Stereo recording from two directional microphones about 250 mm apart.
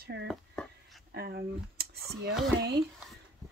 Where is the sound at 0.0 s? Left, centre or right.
Right.